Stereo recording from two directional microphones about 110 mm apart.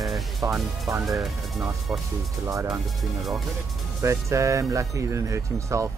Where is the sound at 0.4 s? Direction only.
25° right (ahead or behind).